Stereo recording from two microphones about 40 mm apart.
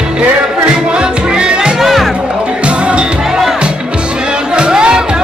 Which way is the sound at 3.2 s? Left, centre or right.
Centre.